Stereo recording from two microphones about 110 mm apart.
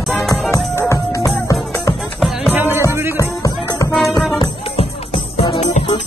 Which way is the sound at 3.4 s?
30° left (ahead or behind).